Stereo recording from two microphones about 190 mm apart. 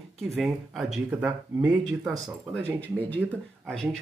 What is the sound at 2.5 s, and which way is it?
Speech, 5° left (ahead or behind).